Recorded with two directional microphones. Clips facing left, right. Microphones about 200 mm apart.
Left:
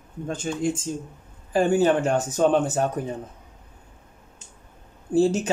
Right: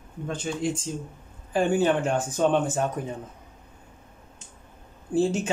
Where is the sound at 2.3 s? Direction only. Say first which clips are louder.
Left 2 dB; 40° left (ahead or behind).